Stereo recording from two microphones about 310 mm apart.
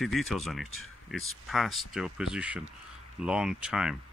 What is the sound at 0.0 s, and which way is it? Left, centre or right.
Speech, centre.